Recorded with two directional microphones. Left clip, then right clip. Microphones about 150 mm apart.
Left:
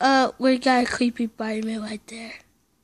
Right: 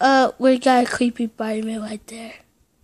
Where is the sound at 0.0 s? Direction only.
5° right (ahead or behind).